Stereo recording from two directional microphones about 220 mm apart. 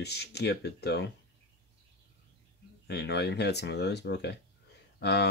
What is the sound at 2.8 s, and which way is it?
Speech, 50° left (ahead or behind).